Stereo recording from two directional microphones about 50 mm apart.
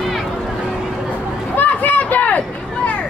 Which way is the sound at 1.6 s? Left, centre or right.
Left.